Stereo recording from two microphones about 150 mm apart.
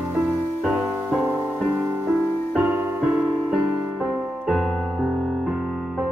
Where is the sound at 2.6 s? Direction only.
10° right (ahead or behind).